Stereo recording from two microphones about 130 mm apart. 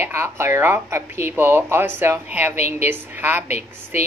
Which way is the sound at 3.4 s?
60° left (ahead or behind).